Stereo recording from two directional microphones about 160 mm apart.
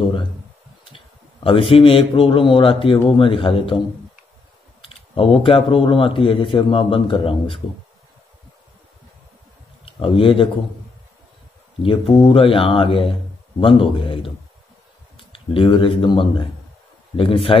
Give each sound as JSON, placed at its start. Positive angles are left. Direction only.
{"t": 0.8, "sound": "a man's voice", "side_deg": 35}
{"t": 4.8, "sound": "speech", "side_deg": 35}
{"t": 9.8, "sound": "speech", "side_deg": 35}
{"t": 12.3, "sound": "speech", "side_deg": 35}